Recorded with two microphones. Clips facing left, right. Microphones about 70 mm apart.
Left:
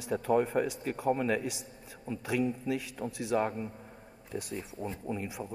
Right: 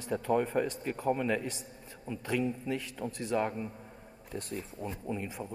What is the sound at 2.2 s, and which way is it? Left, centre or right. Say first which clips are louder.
Speech: left 1 dB; centre.